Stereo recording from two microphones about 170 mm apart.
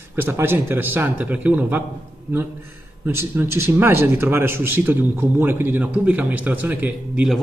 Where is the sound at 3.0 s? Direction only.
10° right (ahead or behind).